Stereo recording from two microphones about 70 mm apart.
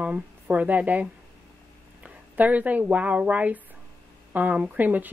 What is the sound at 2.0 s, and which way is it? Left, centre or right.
A woman's voice, right.